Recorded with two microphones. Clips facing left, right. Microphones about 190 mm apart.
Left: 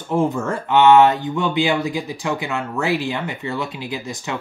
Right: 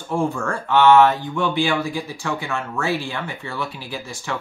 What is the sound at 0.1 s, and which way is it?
Speech, 20° left (ahead or behind).